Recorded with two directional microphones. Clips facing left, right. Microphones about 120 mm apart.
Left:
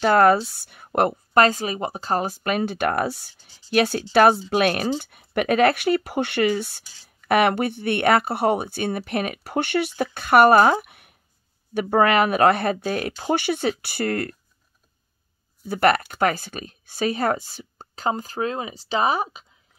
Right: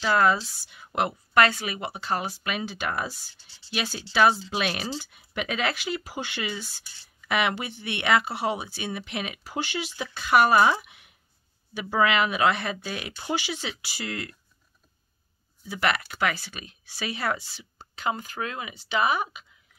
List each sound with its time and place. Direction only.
0.0 s speech: 55° left (ahead or behind)
3.3 s speech: 80° right
3.7 s speech: 55° left (ahead or behind)
15.6 s speech: 50° left (ahead or behind); by 19.4 s 35° left (ahead or behind)